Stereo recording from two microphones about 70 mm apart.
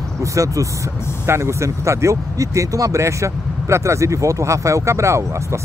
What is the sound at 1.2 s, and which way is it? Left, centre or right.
Speech, right.